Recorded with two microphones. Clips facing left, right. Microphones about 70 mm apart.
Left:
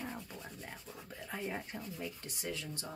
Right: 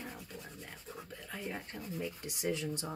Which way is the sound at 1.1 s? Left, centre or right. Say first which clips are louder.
Left 3 dB; centre.